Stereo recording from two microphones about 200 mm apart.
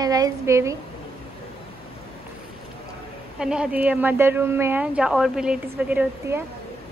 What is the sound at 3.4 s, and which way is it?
A woman's voice, 5° right (ahead or behind).